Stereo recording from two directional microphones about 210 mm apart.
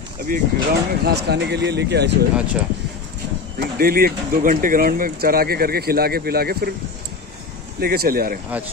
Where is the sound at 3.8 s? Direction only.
45° right (ahead or behind).